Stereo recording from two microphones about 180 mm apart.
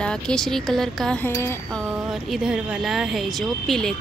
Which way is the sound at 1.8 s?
Centre (ahead or behind).